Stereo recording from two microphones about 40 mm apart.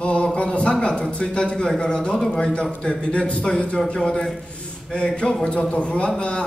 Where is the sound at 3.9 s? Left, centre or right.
Centre.